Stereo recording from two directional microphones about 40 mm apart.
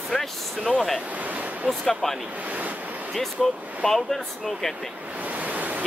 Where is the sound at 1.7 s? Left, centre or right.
Centre.